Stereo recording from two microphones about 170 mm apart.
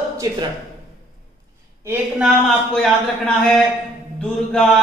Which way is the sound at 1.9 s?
5° right (ahead or behind).